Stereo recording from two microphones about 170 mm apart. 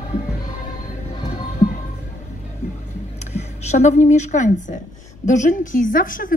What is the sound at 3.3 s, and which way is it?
A woman's voice, 40° left (ahead or behind).